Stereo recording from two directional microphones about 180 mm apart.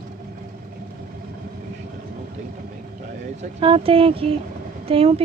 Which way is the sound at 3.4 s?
30° right (ahead or behind).